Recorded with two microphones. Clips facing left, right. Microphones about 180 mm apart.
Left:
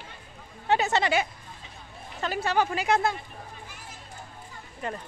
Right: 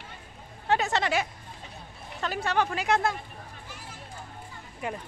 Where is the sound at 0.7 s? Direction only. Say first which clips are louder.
Left 2 dB; centre (ahead or behind).